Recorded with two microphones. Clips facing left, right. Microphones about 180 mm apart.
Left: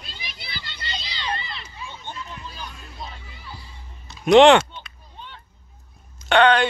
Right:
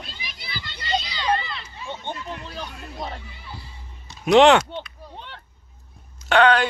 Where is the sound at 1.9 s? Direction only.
60° right (ahead or behind).